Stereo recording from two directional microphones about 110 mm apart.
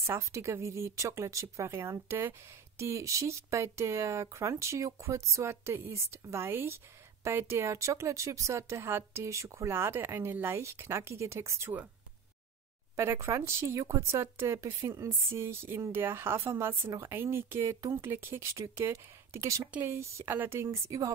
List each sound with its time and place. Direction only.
0.0 s speech: 25° right (ahead or behind)
12.9 s speech: 25° right (ahead or behind)